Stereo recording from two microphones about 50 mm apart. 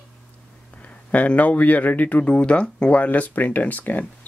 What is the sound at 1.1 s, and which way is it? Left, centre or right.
Speech, left.